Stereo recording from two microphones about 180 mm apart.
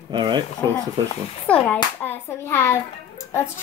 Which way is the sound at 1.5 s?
5° left (ahead or behind).